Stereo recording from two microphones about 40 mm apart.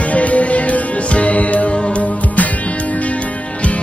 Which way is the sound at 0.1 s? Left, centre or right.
Left.